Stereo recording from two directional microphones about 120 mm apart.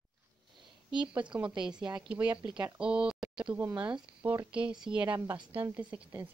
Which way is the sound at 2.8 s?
5° right (ahead or behind).